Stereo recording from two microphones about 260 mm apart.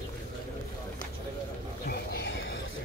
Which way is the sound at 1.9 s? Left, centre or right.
Left.